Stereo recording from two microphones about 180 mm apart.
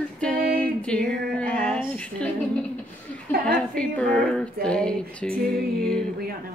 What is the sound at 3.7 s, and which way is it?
Female singing, 5° left (ahead or behind).